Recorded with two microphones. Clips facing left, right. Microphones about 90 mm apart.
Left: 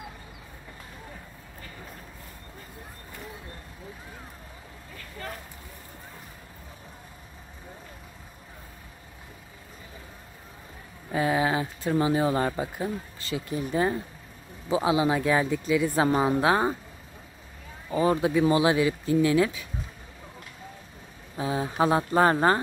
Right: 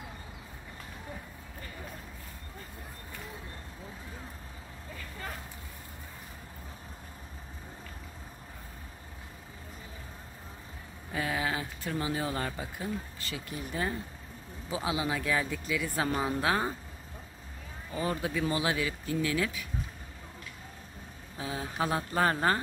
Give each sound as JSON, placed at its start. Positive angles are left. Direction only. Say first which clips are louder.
{"t": 11.1, "sound": "speech", "louder": "left 8 dB", "side_deg": 25}
{"t": 18.2, "sound": "speech", "louder": "left 8 dB", "side_deg": 20}
{"t": 21.4, "sound": "speech", "louder": "left 8 dB", "side_deg": 35}